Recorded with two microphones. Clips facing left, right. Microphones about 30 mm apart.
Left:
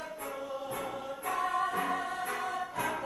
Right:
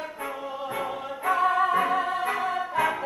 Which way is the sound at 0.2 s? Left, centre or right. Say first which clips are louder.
Right 5 dB; right.